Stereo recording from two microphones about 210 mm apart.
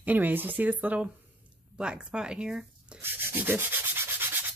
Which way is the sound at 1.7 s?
5° right (ahead or behind).